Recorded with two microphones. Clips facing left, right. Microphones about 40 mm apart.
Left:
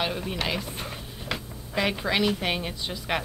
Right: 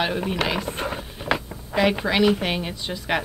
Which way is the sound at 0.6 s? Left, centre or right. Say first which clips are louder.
Right 7 dB; right.